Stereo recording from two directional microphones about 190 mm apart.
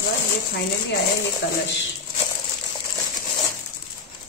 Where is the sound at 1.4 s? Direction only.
60° left (ahead or behind).